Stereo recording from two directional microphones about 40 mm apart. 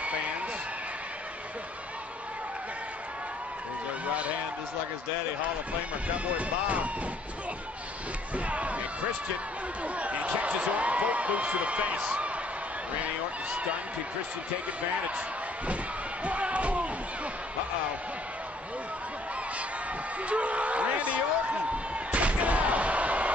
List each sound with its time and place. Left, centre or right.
5.4 s speech: right
8.5 s speech: right
9.9 s speech: right
16.3 s slam: right
20.2 s speech: right
21.9 s slam: right